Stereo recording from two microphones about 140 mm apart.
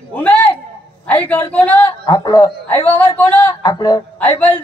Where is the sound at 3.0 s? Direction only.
10° left (ahead or behind).